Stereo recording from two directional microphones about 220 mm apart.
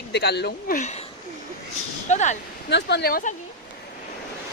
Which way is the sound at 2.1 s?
30° left (ahead or behind).